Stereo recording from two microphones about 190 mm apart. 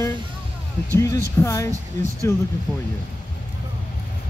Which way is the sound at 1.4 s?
15° left (ahead or behind).